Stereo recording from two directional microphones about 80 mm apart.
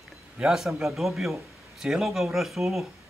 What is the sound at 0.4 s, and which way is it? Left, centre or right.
Speech, centre.